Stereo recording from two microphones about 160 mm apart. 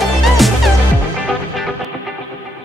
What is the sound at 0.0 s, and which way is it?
Music, centre (ahead or behind).